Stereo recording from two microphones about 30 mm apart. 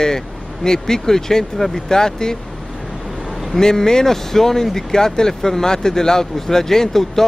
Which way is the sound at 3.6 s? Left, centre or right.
Centre.